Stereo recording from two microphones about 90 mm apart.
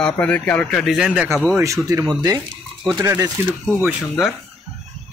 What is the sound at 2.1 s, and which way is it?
Speech, 50° right (ahead or behind).